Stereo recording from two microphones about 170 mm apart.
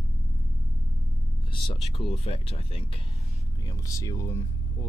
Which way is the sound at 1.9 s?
35° left (ahead or behind).